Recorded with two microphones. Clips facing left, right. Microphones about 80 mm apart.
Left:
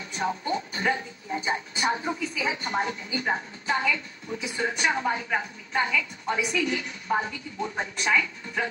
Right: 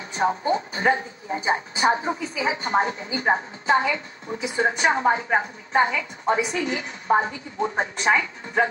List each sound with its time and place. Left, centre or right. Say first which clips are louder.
0.1 s a woman's voice: right 6 dB; right